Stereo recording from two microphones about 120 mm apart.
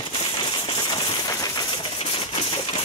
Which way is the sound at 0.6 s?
35° left (ahead or behind).